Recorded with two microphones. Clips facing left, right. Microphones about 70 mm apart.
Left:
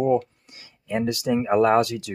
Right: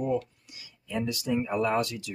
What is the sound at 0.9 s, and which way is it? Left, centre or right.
Speech, left.